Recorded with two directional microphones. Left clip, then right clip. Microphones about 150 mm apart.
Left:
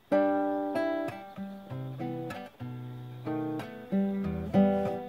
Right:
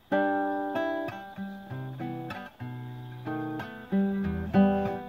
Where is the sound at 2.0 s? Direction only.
15° left (ahead or behind).